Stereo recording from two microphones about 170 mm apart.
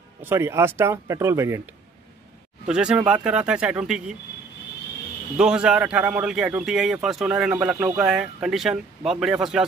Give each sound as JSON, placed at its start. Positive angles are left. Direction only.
{"t": 0.2, "sound": "speech", "side_deg": -15}
{"t": 2.6, "sound": "speech", "side_deg": -5}
{"t": 5.4, "sound": "speech", "side_deg": -5}